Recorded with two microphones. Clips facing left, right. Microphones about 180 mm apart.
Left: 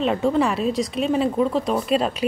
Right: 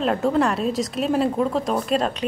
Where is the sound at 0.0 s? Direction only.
Centre (ahead or behind).